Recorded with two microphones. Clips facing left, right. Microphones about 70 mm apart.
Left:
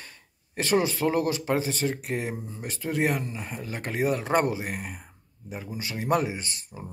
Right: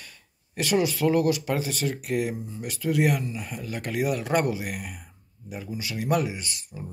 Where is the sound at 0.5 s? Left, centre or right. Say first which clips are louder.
Even; left.